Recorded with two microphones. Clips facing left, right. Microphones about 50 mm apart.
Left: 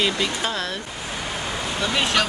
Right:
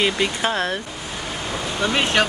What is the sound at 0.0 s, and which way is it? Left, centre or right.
Speech, right.